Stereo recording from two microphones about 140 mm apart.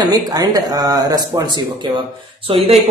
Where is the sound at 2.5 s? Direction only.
40° right (ahead or behind).